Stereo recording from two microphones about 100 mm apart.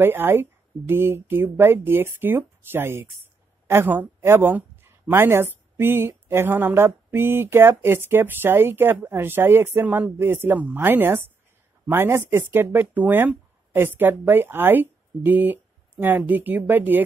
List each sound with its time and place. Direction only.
0.0 s speech: 20° right (ahead or behind)